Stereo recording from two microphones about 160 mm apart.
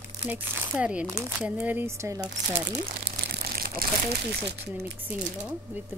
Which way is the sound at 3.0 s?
70° right (ahead or behind).